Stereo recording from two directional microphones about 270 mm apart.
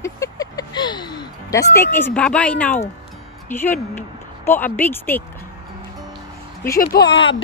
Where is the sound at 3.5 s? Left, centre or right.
Centre.